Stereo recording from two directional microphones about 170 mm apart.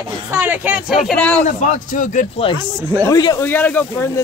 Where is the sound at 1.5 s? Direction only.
45° left (ahead or behind).